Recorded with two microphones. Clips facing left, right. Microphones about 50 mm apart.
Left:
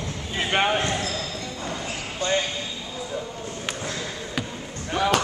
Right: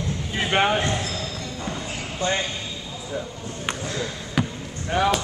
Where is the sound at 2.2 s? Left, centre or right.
Right.